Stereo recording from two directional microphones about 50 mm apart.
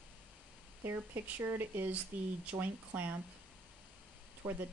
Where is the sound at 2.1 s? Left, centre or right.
Right.